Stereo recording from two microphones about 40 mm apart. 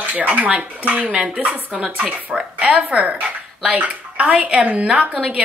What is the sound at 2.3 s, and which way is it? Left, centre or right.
Speech, centre.